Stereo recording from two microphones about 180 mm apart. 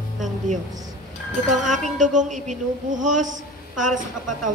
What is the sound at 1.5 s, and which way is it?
A woman's voice, 45° right (ahead or behind).